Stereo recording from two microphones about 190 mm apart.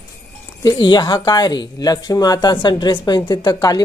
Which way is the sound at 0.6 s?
20° left (ahead or behind).